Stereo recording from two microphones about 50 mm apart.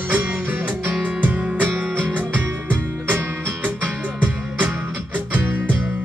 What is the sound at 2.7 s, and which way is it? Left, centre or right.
Music, right.